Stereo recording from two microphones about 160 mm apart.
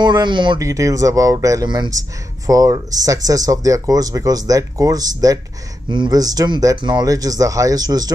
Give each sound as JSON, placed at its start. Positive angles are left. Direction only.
{"t": 0.0, "sound": "speech", "side_deg": -25}